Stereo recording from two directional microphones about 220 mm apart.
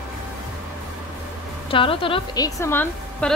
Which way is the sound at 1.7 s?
25° left (ahead or behind).